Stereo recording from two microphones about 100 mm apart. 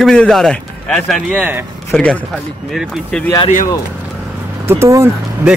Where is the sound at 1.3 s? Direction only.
15° right (ahead or behind).